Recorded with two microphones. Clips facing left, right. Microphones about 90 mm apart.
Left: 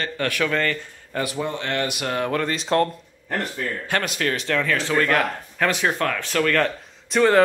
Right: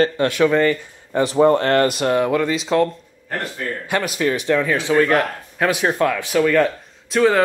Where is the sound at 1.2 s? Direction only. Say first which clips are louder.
Right 12 dB; 35° right (ahead or behind).